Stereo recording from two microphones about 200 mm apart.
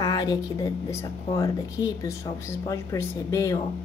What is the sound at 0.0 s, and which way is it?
Speech, 20° left (ahead or behind).